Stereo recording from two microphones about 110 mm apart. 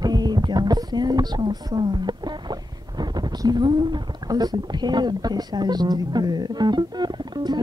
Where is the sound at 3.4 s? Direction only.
40° right (ahead or behind).